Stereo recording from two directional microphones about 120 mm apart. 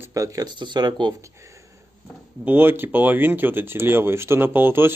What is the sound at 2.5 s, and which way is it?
Speech, 15° right (ahead or behind).